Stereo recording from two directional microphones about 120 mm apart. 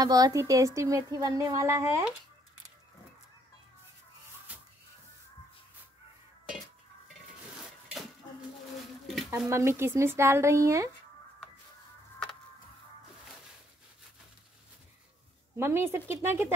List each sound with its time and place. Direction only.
0.0 s speech: 30° right (ahead or behind)
9.3 s speech: 25° right (ahead or behind)
15.5 s speech: 20° right (ahead or behind)